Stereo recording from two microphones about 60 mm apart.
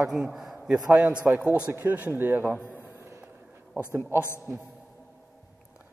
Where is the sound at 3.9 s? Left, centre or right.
Right.